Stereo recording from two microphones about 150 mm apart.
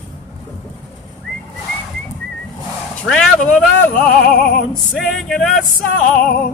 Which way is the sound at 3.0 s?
5° left (ahead or behind).